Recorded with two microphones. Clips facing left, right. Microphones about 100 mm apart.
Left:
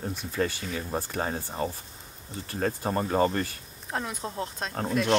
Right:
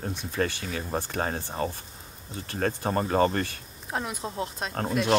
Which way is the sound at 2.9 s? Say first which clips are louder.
Right 1 dB; 40° right (ahead or behind).